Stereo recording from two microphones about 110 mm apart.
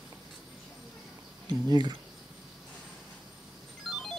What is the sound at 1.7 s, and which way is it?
Speech, 40° right (ahead or behind).